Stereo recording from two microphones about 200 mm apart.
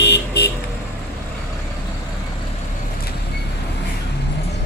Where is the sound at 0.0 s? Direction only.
55° left (ahead or behind).